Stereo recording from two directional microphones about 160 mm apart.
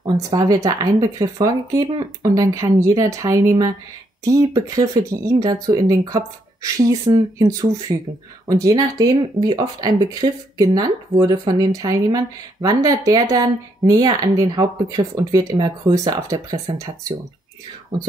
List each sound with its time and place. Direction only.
0.0 s speech: 25° right (ahead or behind)